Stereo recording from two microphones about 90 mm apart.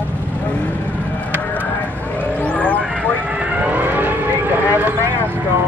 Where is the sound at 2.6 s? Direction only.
15° left (ahead or behind).